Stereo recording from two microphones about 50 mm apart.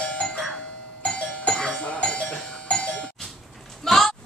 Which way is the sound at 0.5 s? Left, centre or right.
Centre.